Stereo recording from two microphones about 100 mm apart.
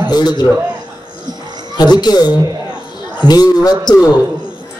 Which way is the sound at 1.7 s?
45° left (ahead or behind).